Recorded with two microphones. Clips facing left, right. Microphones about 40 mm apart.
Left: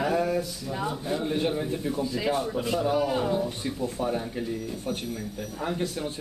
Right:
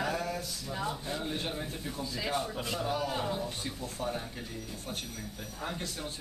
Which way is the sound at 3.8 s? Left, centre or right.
Centre.